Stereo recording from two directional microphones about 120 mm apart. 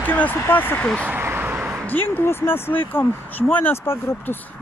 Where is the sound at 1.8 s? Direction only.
15° left (ahead or behind).